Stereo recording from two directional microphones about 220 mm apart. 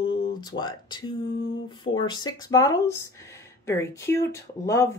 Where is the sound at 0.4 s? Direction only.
20° left (ahead or behind).